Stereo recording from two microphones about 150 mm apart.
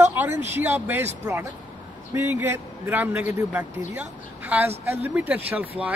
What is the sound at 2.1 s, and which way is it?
A man's voice, 20° right (ahead or behind).